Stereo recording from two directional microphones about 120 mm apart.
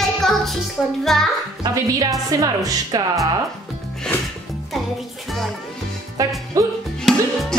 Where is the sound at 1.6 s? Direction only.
30° right (ahead or behind).